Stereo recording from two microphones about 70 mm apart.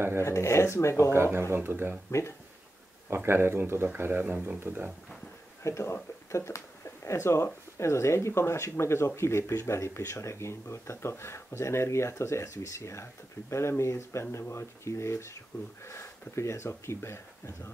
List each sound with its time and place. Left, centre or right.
0.2 s speech: left
1.1 s speech: right
2.0 s speech: left
3.3 s speech: right
5.6 s speech: left